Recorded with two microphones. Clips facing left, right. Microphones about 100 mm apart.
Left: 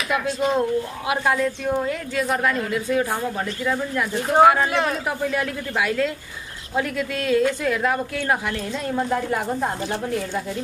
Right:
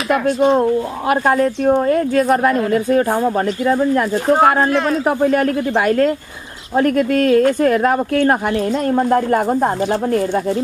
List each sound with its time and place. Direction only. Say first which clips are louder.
0.1 s a woman's voice: right 8 dB; 50° right (ahead or behind)
4.6 s speech: right 6 dB; 5° left (ahead or behind)
4.9 s a woman's voice: right 9 dB; 50° right (ahead or behind)